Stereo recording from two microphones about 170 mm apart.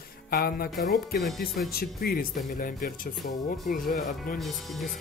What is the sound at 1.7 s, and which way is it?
Speech, 60° left (ahead or behind).